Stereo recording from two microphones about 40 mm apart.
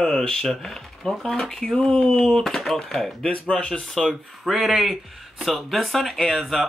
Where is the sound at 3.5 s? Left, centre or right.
Centre.